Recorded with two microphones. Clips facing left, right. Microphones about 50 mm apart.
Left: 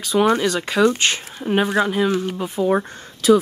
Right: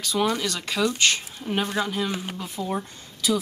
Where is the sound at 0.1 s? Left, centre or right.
Left.